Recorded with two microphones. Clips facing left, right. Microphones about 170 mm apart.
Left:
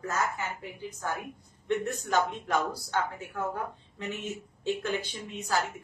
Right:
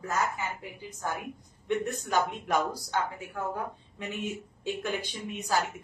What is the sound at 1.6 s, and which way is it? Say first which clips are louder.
A woman's voice: even; 15° right (ahead or behind).